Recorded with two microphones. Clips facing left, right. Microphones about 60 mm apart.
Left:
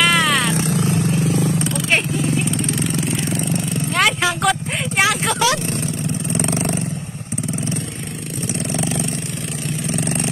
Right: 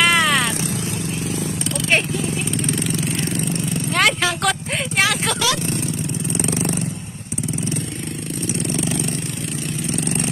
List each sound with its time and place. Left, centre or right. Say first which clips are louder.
0.0 s vehicle: even; centre
0.7 s vehicle: left 6 dB; left
2.5 s vehicle: left 1 dB; centre
6.4 s vehicle: left 1 dB; left